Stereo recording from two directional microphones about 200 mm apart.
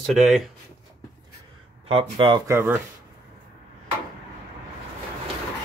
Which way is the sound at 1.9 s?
25° right (ahead or behind).